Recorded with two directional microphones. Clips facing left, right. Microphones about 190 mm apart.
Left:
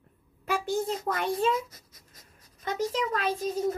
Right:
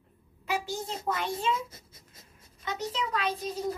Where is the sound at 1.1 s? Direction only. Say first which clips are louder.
Left 4 dB; 55° left (ahead or behind).